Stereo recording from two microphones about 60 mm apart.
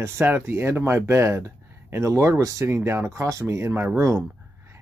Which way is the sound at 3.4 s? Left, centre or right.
Right.